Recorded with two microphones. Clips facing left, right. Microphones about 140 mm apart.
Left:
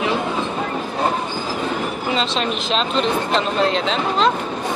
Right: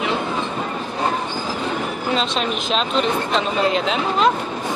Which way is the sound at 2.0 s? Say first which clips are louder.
Even; centre (ahead or behind).